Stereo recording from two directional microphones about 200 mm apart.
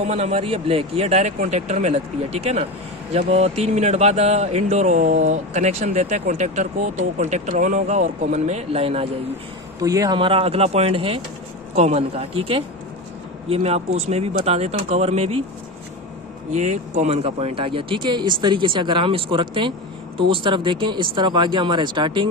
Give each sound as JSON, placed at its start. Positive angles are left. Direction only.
{"t": 0.0, "sound": "speech", "side_deg": -30}
{"t": 9.8, "sound": "speech", "side_deg": -15}
{"t": 16.5, "sound": "speech", "side_deg": -35}